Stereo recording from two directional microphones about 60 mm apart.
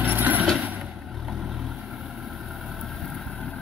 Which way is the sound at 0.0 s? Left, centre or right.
Right.